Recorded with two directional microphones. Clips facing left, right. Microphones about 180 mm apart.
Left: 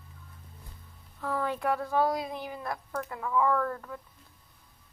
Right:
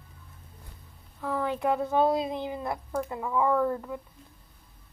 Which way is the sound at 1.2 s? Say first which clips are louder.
Right 2 dB; 15° right (ahead or behind).